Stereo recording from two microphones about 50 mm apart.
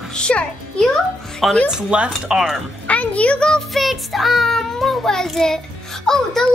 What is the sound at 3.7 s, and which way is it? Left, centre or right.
A child's voice, centre.